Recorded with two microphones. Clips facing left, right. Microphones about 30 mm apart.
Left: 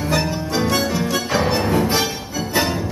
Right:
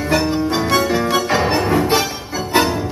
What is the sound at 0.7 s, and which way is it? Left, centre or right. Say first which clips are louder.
Music: right 3 dB; right.